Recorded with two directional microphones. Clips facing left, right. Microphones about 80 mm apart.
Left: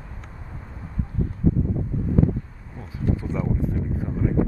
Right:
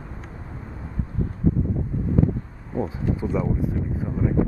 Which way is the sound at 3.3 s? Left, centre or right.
Centre.